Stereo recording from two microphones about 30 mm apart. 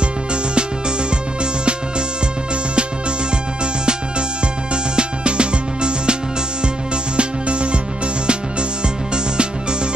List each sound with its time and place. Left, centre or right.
1.4 s music: right
4.9 s music: right
7.2 s music: right
8.8 s music: right